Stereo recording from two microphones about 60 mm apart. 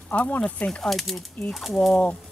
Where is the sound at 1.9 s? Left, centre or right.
Centre.